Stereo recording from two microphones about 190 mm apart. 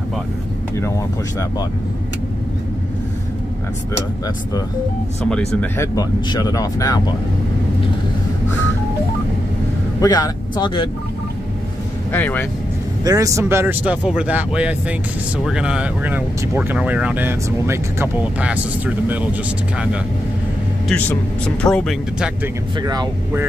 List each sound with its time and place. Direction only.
0.7 s speech: 15° left (ahead or behind)
5.2 s speech: 5° left (ahead or behind)
5.9 s speech: 20° left (ahead or behind)
10.0 s speech: 20° left (ahead or behind)
12.1 s speech: 10° left (ahead or behind)
13.0 s speech: 20° right (ahead or behind)
21.6 s speech: 5° left (ahead or behind)
22.8 s speech: 20° right (ahead or behind)